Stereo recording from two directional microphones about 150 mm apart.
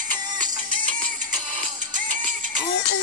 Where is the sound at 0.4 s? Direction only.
60° right (ahead or behind).